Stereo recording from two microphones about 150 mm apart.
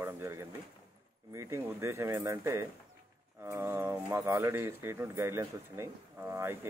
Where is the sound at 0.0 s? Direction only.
15° right (ahead or behind).